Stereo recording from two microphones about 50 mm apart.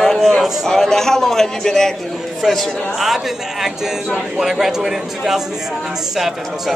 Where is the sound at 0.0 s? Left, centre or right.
Centre.